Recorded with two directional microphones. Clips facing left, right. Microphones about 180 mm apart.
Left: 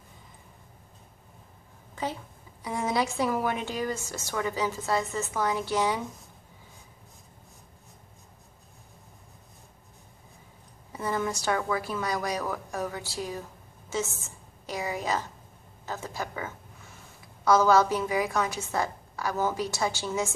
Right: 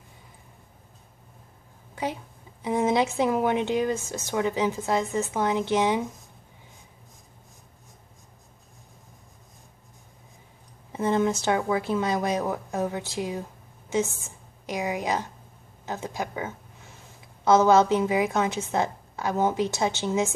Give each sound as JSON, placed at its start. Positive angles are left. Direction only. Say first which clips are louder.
{"t": 2.6, "sound": "speech", "louder": "right 5 dB", "side_deg": -20}
{"t": 10.9, "sound": "a woman's voice", "louder": "right 6 dB", "side_deg": -20}